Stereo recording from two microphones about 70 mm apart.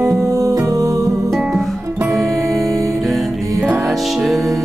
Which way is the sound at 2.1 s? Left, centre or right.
Right.